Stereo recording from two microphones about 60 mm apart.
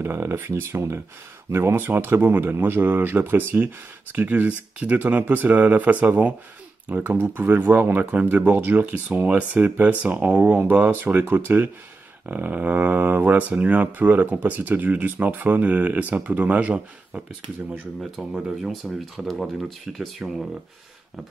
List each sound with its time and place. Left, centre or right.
0.0 s speech: right
18.6 s speech: centre